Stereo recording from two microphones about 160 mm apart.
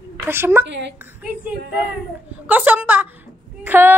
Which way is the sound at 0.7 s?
90° right.